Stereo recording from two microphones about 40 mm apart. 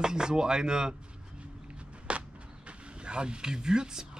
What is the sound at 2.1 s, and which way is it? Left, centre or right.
Walk, right.